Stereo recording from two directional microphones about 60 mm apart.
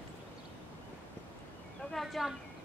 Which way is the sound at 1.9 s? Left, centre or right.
Centre.